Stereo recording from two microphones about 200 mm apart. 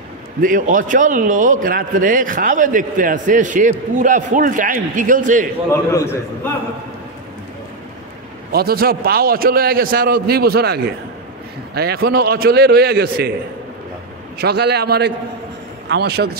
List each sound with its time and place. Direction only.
0.4 s a man's voice: 45° right (ahead or behind)
5.7 s a man's voice: 15° left (ahead or behind)
8.5 s a man's voice: 50° right (ahead or behind)
14.4 s a man's voice: 55° right (ahead or behind)